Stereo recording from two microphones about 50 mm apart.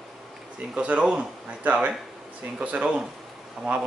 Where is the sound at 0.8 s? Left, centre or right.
Right.